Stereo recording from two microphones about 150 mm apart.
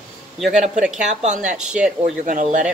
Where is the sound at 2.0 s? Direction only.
55° right (ahead or behind).